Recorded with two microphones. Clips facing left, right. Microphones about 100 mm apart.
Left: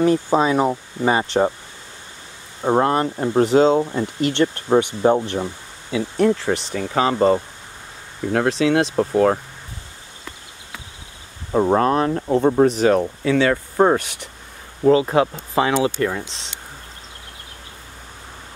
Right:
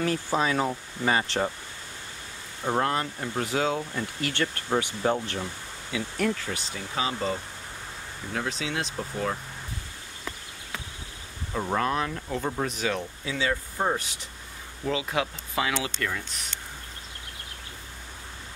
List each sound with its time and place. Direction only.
0.0 s speech: 20° left (ahead or behind)
2.6 s speech: 30° left (ahead or behind)
6.4 s speech: 65° left (ahead or behind); by 7.4 s 50° left (ahead or behind)
8.5 s speech: 75° left (ahead or behind); by 9.4 s 55° left (ahead or behind)
11.5 s speech: 40° left (ahead or behind)
13.0 s speech: 65° left (ahead or behind)
14.9 s speech: 40° left (ahead or behind)